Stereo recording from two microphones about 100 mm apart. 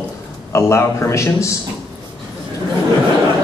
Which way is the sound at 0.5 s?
25° left (ahead or behind).